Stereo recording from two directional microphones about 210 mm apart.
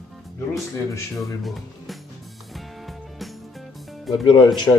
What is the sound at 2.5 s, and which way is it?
Music, centre (ahead or behind).